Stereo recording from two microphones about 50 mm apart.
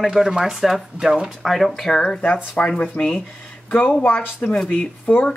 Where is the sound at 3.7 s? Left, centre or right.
Left.